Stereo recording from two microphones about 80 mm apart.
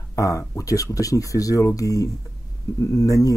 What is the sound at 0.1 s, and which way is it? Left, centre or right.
Speech, left.